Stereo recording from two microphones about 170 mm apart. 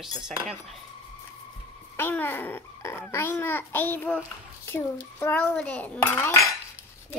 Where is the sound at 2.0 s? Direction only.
15° left (ahead or behind).